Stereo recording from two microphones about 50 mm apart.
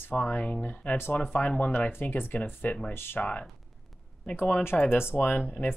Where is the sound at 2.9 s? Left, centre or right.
Left.